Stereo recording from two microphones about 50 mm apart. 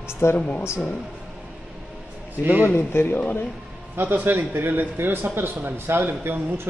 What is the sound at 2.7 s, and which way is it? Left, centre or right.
Speech, left.